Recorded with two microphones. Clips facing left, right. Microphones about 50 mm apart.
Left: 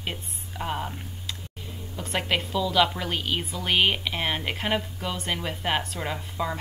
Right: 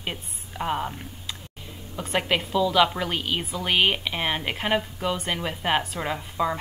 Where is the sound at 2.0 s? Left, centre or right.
Centre.